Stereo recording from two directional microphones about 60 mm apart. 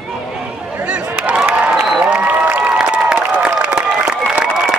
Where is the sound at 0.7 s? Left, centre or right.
Right.